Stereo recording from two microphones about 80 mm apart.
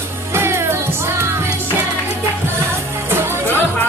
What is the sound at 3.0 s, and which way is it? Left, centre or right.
Music, right.